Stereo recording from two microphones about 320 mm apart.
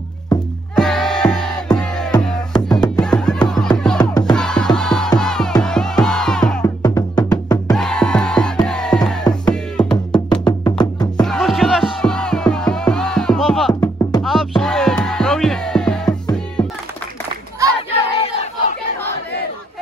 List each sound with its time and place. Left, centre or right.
0.7 s music: centre
4.0 s music: centre
4.3 s music: centre
7.7 s music: centre
11.2 s music: centre
18.2 s a sound: centre